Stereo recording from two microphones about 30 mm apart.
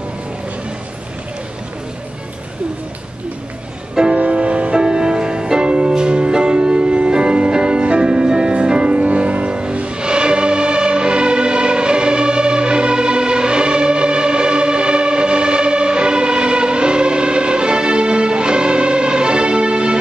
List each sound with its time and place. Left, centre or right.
4.2 s music: right
4.8 s music: right